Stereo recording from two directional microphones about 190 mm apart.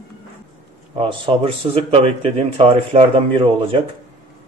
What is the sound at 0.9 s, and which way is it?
A man's voice, 25° right (ahead or behind).